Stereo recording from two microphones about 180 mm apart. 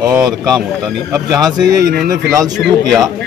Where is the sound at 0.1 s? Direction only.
Centre (ahead or behind).